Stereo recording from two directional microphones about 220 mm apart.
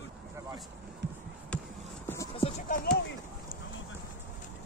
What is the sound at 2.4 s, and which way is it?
Clip-clop, 30° left (ahead or behind).